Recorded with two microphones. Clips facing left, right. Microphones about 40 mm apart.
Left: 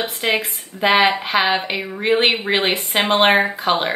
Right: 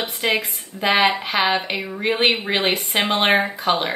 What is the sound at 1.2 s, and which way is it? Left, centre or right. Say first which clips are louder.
Speech: left 2 dB; left.